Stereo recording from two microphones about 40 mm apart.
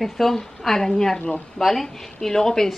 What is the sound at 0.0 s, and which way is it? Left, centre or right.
A woman's voice, centre.